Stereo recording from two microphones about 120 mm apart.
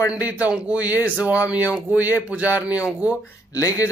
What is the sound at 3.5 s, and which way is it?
Speech, 25° left (ahead or behind).